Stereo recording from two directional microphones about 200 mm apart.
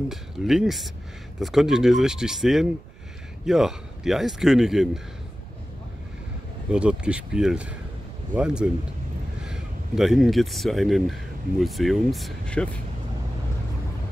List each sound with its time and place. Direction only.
0.1 s a man's voice: centre (ahead or behind)
6.7 s a man's voice: 5° right (ahead or behind)